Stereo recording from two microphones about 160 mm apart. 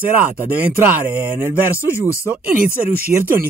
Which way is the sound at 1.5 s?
15° left (ahead or behind).